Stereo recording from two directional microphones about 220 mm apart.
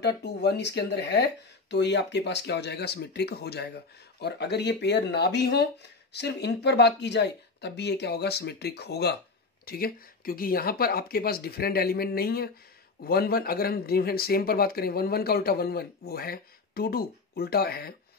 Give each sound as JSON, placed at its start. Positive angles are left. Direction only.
{"t": 0.0, "sound": "speech", "side_deg": 50}